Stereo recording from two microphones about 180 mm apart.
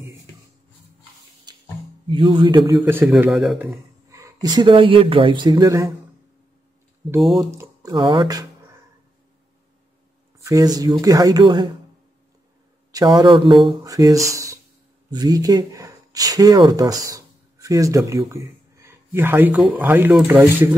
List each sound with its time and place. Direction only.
2.0 s speech: 25° right (ahead or behind)
2.8 s a man's voice: 10° right (ahead or behind)
4.1 s speech: 20° right (ahead or behind)
7.2 s speech: centre (ahead or behind)
7.5 s speech: 15° right (ahead or behind)
10.4 s speech: 20° right (ahead or behind)
12.9 s speech: 20° right (ahead or behind)